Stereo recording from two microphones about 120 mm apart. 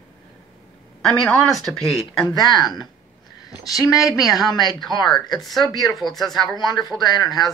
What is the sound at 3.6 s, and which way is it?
A woman's voice, 30° left (ahead or behind).